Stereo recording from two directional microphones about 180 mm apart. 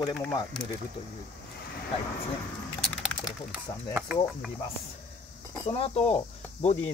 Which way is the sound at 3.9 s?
5° right (ahead or behind).